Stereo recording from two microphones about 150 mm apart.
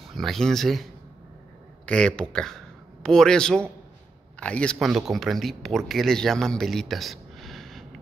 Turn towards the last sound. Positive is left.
turn(degrees=0)  # may be behind; listen again after turning